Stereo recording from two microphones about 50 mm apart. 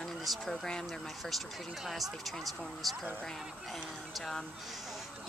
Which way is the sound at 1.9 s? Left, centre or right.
Centre.